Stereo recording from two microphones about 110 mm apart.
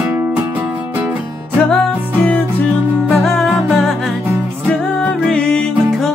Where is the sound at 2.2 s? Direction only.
15° left (ahead or behind).